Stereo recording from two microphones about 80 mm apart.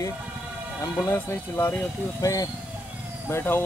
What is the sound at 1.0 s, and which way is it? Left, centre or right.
Speech, left.